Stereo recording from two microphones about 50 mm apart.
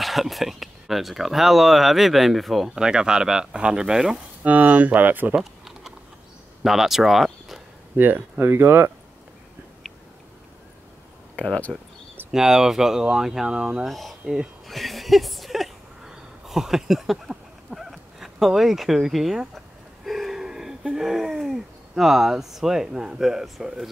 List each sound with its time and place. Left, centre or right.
0.0 s speech: centre
2.8 s speech: centre
4.4 s speech: right
5.4 s typing: centre
6.6 s speech: centre
8.0 s speech: right
11.7 s speech: centre
13.8 s speech: centre
14.7 s a sound: centre
17.7 s speech: centre
20.1 s a sound: centre
20.9 s speech: centre